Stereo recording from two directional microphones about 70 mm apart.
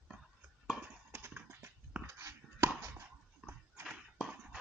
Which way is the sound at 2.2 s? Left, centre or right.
Right.